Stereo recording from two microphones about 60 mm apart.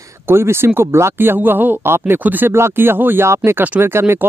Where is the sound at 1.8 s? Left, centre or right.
Right.